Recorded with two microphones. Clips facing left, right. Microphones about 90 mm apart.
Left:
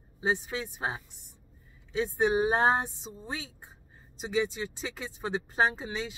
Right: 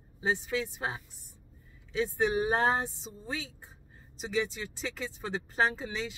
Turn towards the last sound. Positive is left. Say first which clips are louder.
# left 1 dB
turn(degrees=15)  # may be behind; listen again after turning